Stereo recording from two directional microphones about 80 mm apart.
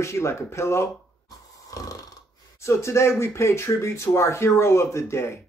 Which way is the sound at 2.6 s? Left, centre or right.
Left.